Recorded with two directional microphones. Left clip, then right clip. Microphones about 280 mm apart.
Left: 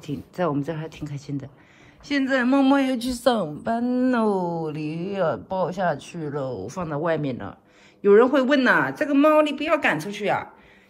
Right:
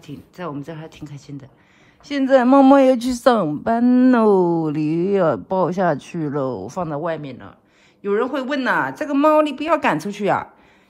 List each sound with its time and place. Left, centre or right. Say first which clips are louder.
0.0 s a woman's voice: left 5 dB; centre
3.7 s a woman's voice: right 7 dB; right